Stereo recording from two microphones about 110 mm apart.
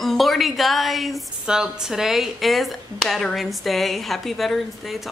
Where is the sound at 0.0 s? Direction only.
Centre (ahead or behind).